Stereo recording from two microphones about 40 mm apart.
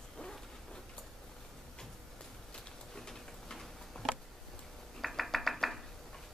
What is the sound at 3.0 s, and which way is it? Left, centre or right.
Tick-tock, centre.